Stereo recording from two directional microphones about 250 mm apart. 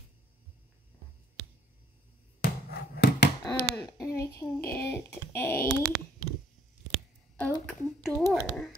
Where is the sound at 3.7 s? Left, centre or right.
Centre.